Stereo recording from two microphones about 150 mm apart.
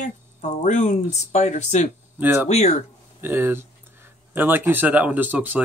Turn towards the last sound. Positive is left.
turn(degrees=-10)  # may be behind; listen again after turning